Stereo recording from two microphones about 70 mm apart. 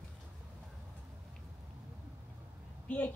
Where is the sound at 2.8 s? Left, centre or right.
Centre.